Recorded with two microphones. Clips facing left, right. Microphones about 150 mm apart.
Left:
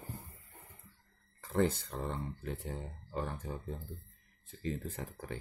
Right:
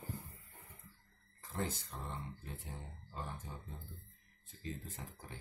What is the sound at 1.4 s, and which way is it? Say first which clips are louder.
Speech: left 10 dB; 70° left (ahead or behind).